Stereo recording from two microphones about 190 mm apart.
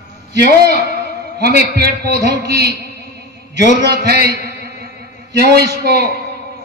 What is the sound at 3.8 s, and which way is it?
A man's voice, 60° right (ahead or behind).